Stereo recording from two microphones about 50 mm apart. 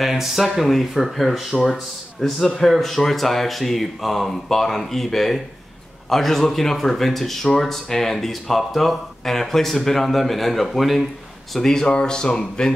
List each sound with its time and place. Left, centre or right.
0.0 s speech: centre
11.5 s speech: centre